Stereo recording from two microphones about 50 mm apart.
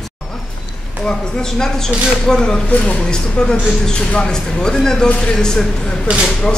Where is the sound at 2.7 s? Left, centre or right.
Left.